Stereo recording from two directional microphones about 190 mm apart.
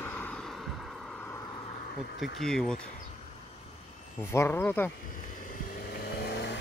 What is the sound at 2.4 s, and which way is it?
Speech, 5° left (ahead or behind).